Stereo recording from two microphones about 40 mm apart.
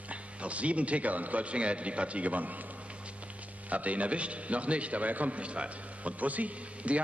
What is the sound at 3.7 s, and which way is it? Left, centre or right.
A man's voice, right.